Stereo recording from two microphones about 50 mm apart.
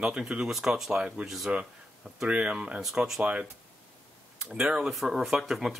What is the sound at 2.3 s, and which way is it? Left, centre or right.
Speech, right.